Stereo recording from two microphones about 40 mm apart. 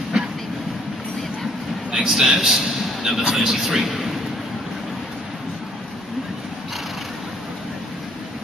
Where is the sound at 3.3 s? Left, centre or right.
Centre.